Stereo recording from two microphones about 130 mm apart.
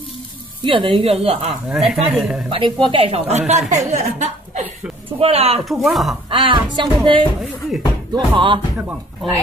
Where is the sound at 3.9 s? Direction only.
65° right (ahead or behind).